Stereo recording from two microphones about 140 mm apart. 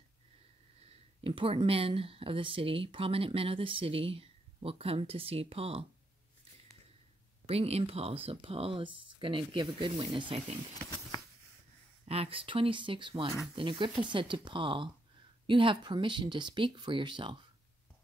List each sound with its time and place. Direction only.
0.8 s speech: 40° right (ahead or behind)
7.4 s speech: 45° right (ahead or behind)
12.1 s speech: 45° right (ahead or behind)